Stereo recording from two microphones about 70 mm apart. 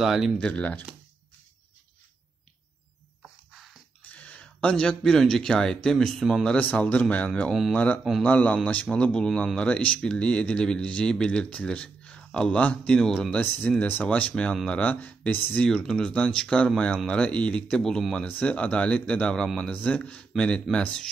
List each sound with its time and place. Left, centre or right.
0.0 s a man's voice: centre
0.4 s speech: centre
4.4 s speech: centre
6.4 s speech: left
13.4 s speech: left
15.6 s speech: centre
18.2 s speech: left
19.4 s a man's voice: centre
19.7 s speech: centre